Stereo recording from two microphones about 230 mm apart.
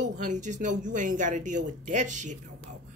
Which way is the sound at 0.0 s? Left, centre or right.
Right.